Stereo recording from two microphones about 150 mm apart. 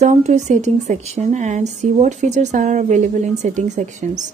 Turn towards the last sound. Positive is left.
turn(degrees=-50)  # may be behind; listen again after turning